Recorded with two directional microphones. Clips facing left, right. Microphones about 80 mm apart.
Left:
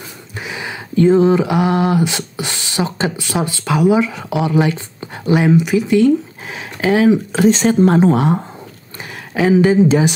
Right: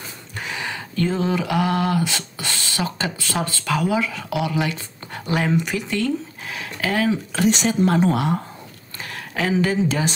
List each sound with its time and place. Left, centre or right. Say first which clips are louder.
0.4 s a sound: left 2 dB; centre
0.9 s speech: left 11 dB; left; by 5.9 s centre
5.9 s speech: left 12 dB; left
7.4 s speech: left 6 dB; left
9.3 s speech: left 9 dB; centre